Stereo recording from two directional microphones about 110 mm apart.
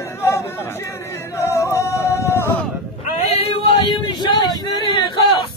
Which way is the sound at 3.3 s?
60° left (ahead or behind).